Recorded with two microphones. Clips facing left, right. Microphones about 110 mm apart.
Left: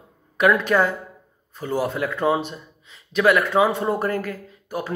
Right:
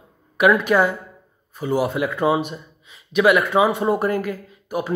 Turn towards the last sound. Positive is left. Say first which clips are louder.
# right 3 dB
turn(degrees=-15)  # may be behind; listen again after turning